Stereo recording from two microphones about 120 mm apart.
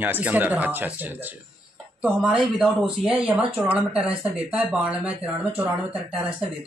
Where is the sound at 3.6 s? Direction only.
10° right (ahead or behind).